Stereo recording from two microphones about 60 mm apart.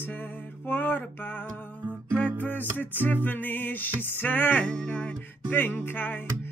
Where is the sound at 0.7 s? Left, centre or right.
Left.